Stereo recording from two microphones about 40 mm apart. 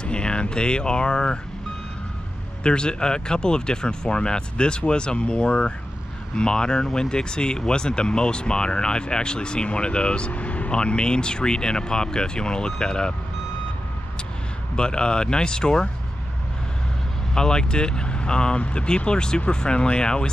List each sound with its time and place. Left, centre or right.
0.0 s speech: left
2.6 s speech: left
14.8 s speech: left
17.3 s speech: centre